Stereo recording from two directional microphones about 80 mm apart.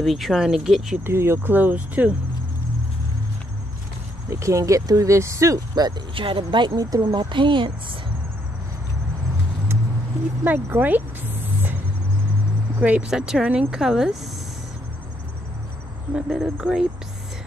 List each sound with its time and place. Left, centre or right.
0.0 s speech: centre
1.0 s speech: right
4.3 s speech: right
5.8 s speech: right
6.8 s speech: right
7.2 s a woman's voice: right
10.4 s a sound: right
12.8 s speech: centre
16.2 s speech: centre